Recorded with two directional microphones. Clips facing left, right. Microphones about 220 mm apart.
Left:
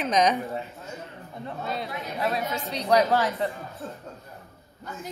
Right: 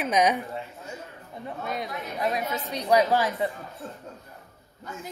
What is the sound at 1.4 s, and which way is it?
A woman's voice, 15° right (ahead or behind).